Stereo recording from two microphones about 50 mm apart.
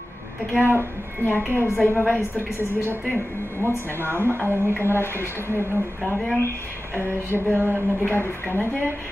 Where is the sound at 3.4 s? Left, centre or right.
Right.